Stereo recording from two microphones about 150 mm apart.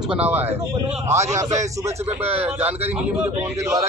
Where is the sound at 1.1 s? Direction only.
50° right (ahead or behind).